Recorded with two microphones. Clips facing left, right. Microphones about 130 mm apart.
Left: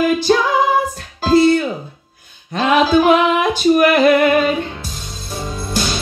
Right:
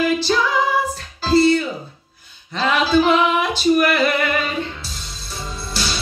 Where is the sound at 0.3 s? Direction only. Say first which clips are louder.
Left 4 dB; 50° left (ahead or behind).